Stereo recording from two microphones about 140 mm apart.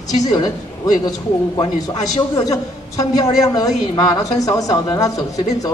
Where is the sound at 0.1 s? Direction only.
25° left (ahead or behind).